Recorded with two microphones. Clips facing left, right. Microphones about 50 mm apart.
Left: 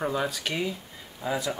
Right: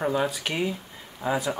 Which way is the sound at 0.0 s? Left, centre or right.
Centre.